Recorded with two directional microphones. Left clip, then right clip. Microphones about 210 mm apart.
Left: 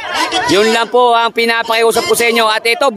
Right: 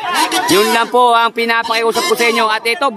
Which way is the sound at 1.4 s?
20° left (ahead or behind).